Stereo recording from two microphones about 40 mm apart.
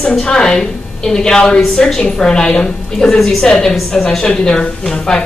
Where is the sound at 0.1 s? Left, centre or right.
Centre.